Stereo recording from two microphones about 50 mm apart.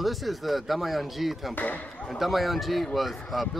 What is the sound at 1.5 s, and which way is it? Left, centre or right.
Speech, left.